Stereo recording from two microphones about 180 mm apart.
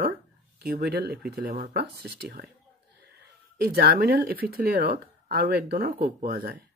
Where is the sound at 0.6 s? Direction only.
60° right (ahead or behind).